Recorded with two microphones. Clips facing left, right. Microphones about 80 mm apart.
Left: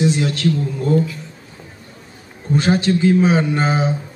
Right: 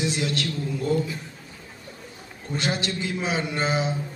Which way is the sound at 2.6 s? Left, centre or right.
Left.